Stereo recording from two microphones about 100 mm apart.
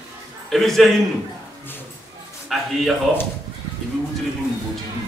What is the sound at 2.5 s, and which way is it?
Speech, centre (ahead or behind).